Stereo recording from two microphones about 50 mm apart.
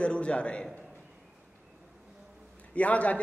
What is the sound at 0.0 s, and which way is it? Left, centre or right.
Speech, left.